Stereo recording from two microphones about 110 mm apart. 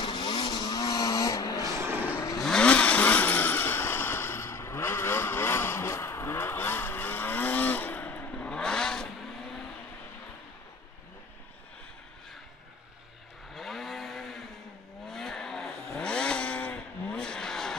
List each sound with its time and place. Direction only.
0.0 s vehicle: 45° left (ahead or behind)
1.6 s vehicle: 25° right (ahead or behind)
2.1 s vehicle: 35° left (ahead or behind)
2.4 s vehicle: 10° left (ahead or behind)
13.6 s a sound: centre (ahead or behind)
15.0 s vehicle: 5° left (ahead or behind)